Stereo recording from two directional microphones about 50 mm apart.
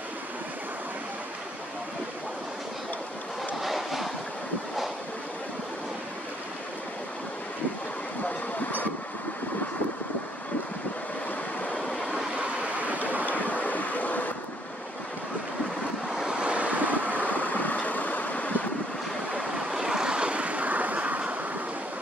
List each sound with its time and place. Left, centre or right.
3.6 s vehicle: centre
12.4 s waves: right
13.2 s vehicle: left
16.1 s vehicle: centre; by 17.3 s right
17.3 s vehicle: left
19.3 s vehicle: centre; by 21.5 s right